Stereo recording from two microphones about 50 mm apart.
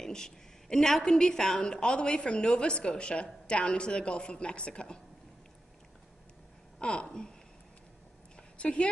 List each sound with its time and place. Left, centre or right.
0.0 s a woman's voice: centre
6.8 s speech: centre
8.5 s speech: left